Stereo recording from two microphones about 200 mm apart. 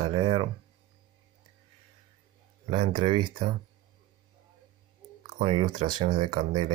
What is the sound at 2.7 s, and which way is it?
Speech, 30° right (ahead or behind).